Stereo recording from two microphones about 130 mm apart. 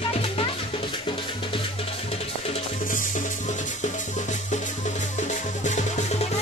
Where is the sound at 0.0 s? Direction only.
45° left (ahead or behind).